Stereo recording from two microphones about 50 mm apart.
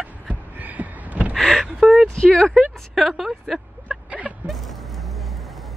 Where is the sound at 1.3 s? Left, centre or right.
Centre.